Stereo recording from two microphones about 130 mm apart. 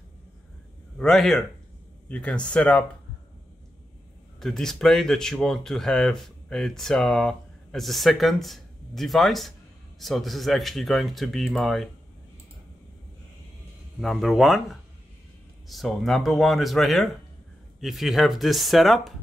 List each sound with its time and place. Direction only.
0.9 s speech: centre (ahead or behind)
4.4 s speech: 5° left (ahead or behind)
14.0 s speech: centre (ahead or behind)